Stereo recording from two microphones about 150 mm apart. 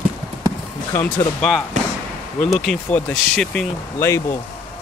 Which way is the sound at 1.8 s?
55° right (ahead or behind).